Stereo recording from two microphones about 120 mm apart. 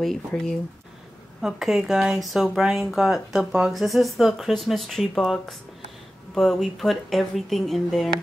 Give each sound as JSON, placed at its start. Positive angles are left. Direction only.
{"t": 0.0, "sound": "speech", "side_deg": 5}